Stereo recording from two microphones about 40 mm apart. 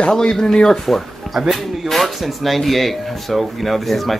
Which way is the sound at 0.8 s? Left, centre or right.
Centre.